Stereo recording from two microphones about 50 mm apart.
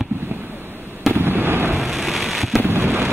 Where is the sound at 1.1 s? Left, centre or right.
Right.